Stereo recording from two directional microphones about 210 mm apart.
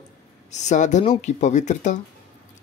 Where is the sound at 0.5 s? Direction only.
35° left (ahead or behind).